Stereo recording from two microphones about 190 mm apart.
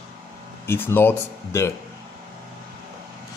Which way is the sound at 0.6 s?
10° left (ahead or behind).